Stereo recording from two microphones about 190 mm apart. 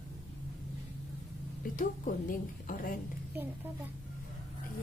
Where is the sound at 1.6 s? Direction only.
45° left (ahead or behind).